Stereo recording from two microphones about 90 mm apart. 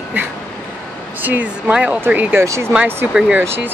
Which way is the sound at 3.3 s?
25° right (ahead or behind).